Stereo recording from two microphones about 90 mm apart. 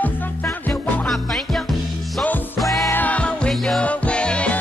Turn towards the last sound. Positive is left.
turn(degrees=10)  # may be behind; listen again after turning